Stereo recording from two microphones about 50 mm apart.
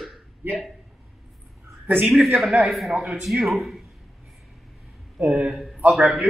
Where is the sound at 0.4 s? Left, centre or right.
Right.